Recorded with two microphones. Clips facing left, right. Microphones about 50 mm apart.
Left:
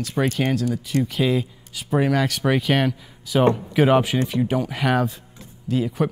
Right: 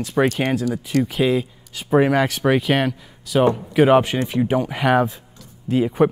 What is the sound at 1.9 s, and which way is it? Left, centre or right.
Speech, centre.